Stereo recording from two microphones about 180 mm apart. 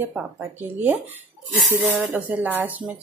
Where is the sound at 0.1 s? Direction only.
10° right (ahead or behind).